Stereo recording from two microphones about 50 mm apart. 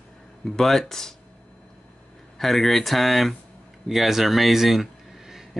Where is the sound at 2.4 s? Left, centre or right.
Centre.